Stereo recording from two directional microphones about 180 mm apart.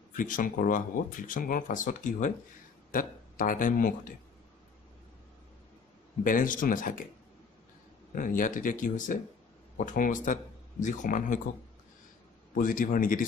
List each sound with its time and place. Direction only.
0.1 s speech: 50° left (ahead or behind)
6.2 s speech: 50° left (ahead or behind)
8.1 s speech: 45° left (ahead or behind)
12.5 s speech: 50° left (ahead or behind)